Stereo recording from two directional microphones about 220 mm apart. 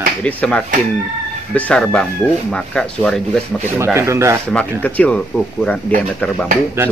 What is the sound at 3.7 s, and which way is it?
Speech, 10° right (ahead or behind).